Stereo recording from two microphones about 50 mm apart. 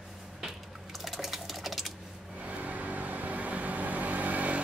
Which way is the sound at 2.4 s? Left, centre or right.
Right.